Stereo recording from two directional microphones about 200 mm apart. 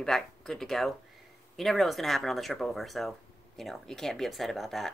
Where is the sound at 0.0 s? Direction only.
Centre (ahead or behind).